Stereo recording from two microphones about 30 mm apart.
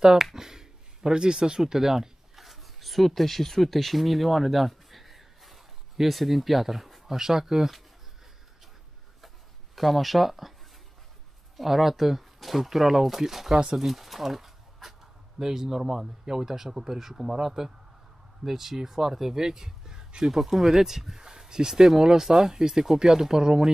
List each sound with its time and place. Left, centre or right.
0.0 s speech: right
0.3 s a sound: centre
1.1 s speech: right
2.3 s a sound: centre
7.2 s speech: centre
9.8 s speech: centre
11.5 s speech: centre; by 23.7 s right